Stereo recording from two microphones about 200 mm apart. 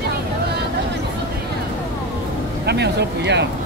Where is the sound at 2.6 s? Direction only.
55° right (ahead or behind).